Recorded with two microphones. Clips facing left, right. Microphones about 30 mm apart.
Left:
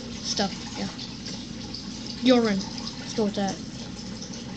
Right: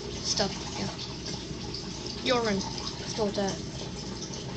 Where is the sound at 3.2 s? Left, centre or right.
Right.